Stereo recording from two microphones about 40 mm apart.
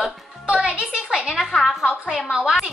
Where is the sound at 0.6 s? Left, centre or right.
Right.